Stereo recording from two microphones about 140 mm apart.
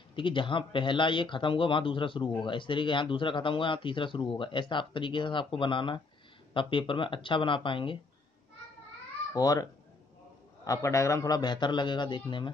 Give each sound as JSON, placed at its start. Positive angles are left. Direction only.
{"t": 0.1, "sound": "speech", "side_deg": 35}
{"t": 9.3, "sound": "a child's voice", "side_deg": 25}